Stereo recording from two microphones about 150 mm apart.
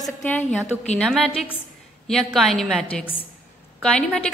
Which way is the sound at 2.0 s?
5° left (ahead or behind).